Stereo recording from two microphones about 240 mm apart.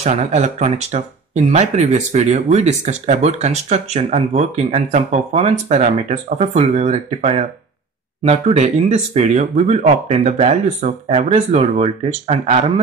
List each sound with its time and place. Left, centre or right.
0.0 s speech: right